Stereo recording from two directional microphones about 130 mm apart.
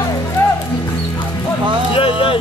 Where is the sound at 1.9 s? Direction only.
45° left (ahead or behind).